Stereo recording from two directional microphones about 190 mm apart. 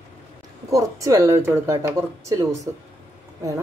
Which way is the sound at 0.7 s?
15° right (ahead or behind).